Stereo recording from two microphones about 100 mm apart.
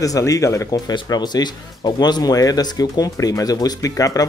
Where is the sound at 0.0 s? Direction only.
35° left (ahead or behind).